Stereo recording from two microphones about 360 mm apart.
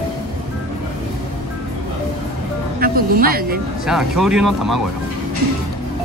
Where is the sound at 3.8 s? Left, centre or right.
Centre.